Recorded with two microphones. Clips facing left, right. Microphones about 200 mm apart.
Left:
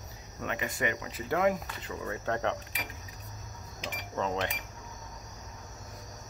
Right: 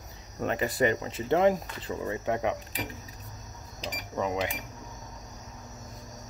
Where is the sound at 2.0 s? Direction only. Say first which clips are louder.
Right 2 dB; 15° right (ahead or behind).